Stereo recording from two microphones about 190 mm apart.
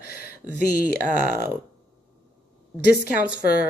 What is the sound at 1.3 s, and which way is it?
Speech, 10° right (ahead or behind).